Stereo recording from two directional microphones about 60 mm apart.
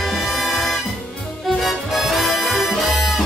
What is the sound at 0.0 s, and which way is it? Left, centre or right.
Music, centre.